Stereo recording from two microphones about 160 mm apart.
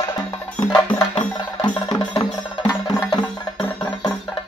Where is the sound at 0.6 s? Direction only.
10° left (ahead or behind).